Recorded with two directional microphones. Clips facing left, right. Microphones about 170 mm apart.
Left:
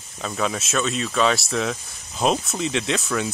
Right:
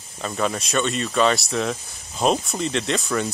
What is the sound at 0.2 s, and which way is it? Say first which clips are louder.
Speech: right 1 dB; centre (ahead or behind).